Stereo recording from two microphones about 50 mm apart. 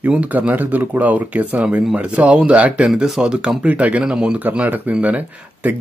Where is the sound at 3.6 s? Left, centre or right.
Right.